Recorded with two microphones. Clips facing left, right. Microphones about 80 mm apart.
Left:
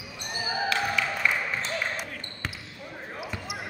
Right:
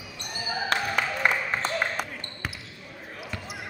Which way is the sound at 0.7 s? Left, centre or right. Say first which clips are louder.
Right 2 dB; right.